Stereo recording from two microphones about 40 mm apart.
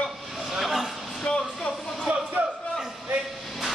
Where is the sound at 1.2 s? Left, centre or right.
Left.